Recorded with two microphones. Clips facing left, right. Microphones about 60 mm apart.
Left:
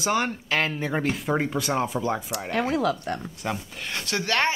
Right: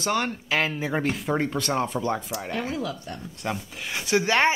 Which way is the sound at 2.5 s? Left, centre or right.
Left.